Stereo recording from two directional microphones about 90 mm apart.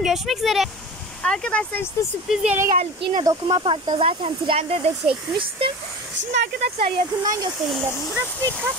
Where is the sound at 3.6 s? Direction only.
70° right (ahead or behind); by 5.7 s 85° right.